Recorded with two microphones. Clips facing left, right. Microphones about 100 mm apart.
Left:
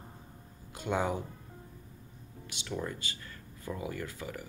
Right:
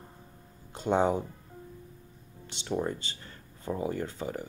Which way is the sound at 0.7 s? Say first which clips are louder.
Right 6 dB; 25° right (ahead or behind).